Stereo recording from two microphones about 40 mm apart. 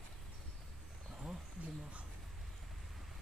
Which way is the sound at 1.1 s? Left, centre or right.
Centre.